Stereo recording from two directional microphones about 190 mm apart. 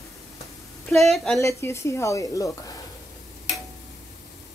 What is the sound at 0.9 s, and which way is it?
Speech, centre (ahead or behind).